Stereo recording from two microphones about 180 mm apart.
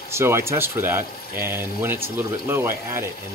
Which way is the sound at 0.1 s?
15° right (ahead or behind).